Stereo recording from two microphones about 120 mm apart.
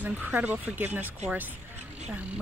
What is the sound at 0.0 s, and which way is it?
Speech, 15° right (ahead or behind).